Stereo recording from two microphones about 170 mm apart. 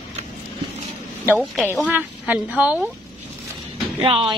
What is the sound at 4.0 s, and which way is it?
Speech, 30° right (ahead or behind).